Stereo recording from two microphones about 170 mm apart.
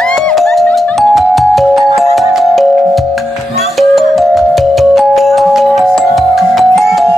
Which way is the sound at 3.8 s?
Centre (ahead or behind).